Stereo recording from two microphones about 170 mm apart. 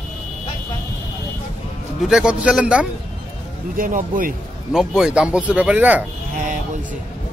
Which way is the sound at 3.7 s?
55° right (ahead or behind).